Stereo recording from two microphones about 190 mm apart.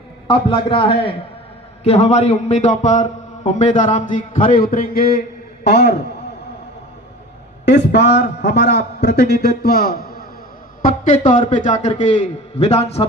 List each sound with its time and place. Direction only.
0.3 s a man's voice: 25° left (ahead or behind); by 5.9 s 55° left (ahead or behind)
7.6 s a man's voice: 65° left (ahead or behind); by 13.0 s 35° left (ahead or behind)